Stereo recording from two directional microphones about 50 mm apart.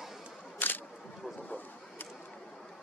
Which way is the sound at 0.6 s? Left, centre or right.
Left.